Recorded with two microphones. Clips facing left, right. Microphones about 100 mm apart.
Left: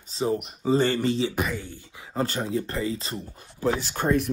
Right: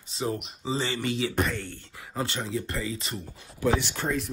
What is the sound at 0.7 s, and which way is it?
Speech, 50° left (ahead or behind).